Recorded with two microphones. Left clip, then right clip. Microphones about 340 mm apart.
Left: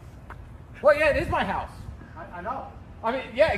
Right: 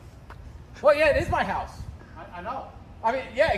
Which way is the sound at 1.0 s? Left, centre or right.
Right.